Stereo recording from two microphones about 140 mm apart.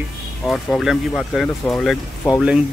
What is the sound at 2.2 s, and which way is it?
Speech, 25° left (ahead or behind).